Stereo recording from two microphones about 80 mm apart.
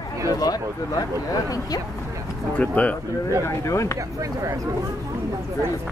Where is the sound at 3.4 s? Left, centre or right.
Left.